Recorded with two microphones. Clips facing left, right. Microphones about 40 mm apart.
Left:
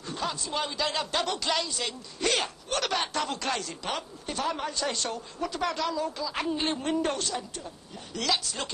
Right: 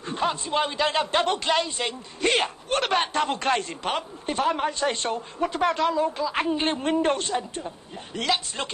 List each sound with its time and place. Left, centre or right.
0.0 s a man's voice: right